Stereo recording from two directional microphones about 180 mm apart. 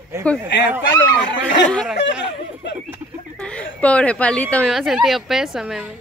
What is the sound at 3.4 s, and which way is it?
Speech, 5° left (ahead or behind).